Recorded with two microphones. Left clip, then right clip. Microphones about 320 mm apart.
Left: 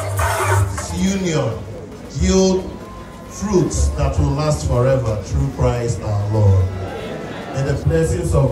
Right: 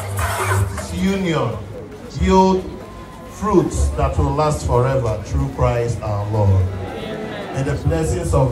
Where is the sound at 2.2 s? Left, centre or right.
Centre.